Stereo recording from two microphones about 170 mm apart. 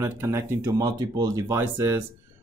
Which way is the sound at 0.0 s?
15° right (ahead or behind).